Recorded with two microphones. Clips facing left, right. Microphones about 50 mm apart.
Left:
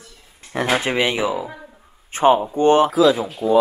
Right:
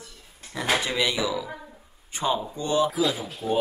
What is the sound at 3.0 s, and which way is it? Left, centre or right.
Speech, left.